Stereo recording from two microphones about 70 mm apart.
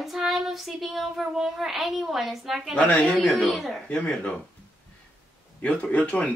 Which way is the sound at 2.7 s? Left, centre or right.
Centre.